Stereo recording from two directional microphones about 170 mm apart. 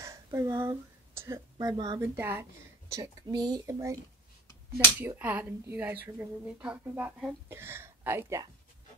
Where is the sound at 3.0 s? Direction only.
20° right (ahead or behind).